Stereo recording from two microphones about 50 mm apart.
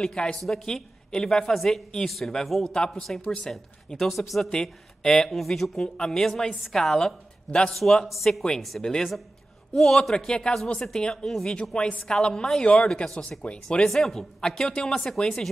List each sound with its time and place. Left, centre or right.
0.0 s a woman's voice: centre
3.5 s speech: centre
4.5 s a woman's voice: centre
5.8 s a woman's voice: centre
13.8 s a woman's voice: centre